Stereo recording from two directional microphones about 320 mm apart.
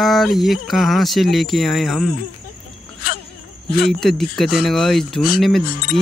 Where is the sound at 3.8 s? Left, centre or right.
Centre.